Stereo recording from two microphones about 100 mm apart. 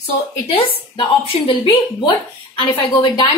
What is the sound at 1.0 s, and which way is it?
Speech, 55° left (ahead or behind).